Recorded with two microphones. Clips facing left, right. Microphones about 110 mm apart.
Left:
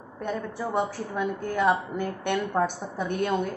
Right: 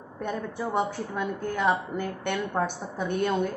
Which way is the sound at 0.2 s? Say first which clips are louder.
Even; centre (ahead or behind).